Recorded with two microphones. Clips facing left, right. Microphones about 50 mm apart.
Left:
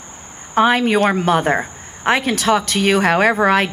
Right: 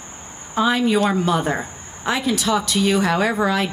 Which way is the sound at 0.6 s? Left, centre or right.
Left.